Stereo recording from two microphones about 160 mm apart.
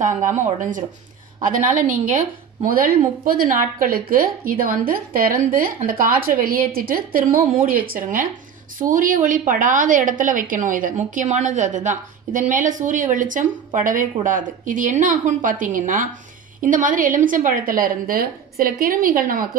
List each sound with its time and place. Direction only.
0.0 s a woman's voice: 50° right (ahead or behind)